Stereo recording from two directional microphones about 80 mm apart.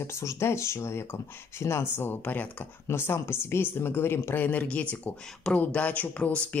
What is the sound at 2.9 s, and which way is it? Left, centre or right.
Speech, left.